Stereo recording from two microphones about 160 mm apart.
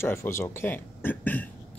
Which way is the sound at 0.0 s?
15° left (ahead or behind).